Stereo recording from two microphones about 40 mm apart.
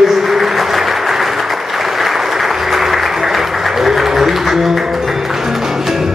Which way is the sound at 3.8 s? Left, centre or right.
Centre.